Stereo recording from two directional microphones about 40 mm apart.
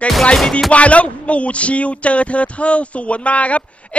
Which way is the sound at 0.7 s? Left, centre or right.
Left.